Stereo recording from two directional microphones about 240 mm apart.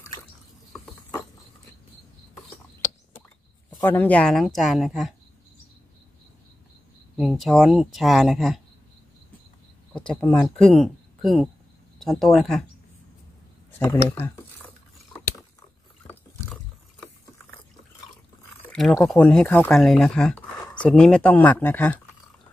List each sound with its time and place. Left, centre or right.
3.7 s speech: centre
7.2 s speech: centre
9.9 s speech: centre
14.0 s speech: centre
16.0 s a sound: centre
18.7 s speech: centre